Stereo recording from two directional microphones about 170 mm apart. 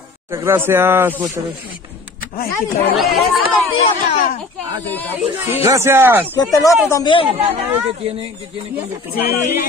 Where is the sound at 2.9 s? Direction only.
Centre (ahead or behind).